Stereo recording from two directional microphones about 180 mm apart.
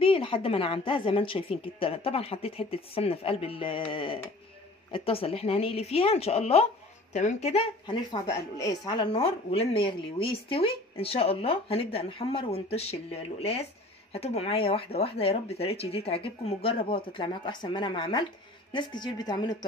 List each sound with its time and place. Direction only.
0.0 s speech: 30° left (ahead or behind)
7.8 s speech: 25° left (ahead or behind)